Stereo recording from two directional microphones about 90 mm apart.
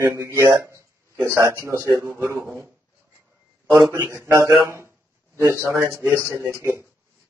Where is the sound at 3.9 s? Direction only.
25° right (ahead or behind).